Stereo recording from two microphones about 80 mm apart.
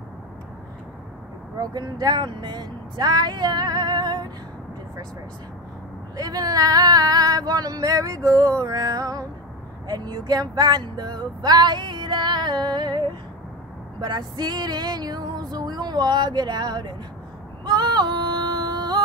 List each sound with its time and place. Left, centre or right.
1.6 s music: right
6.1 s female singing: right
8.6 s music: right
17.6 s female singing: right